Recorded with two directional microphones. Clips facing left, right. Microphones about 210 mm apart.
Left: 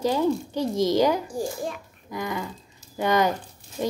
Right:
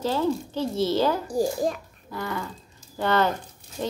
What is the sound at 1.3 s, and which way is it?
Speech, 35° right (ahead or behind).